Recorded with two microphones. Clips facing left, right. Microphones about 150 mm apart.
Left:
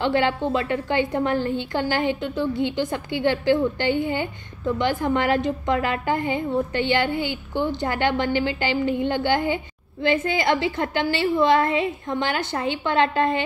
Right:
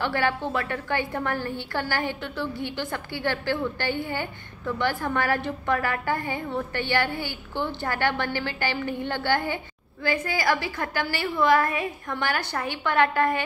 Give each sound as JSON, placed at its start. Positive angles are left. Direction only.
{"t": 0.0, "sound": "a woman's voice", "side_deg": 20}